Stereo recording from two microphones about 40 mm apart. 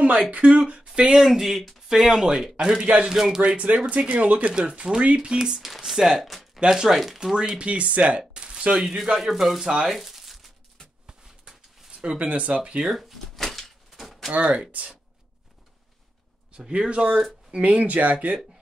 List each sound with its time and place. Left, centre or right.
0.3 s speech: right; by 2.5 s centre
2.5 s speech: right
3.1 s speech: centre
3.4 s speech: right; by 6.6 s centre
6.6 s speech: centre
7.2 s speech: centre
7.6 s speech: right
8.3 s a sound: right
8.7 s speech: centre
9.8 s crumpling: centre
11.9 s speech: right
12.8 s a sound: centre
14.3 s speech: right
16.5 s speech: right